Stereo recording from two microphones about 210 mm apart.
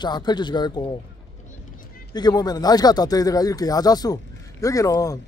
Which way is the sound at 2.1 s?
20° left (ahead or behind).